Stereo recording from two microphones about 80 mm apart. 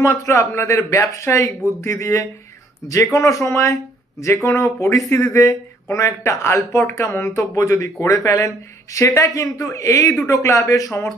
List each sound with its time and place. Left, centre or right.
0.0 s speech: left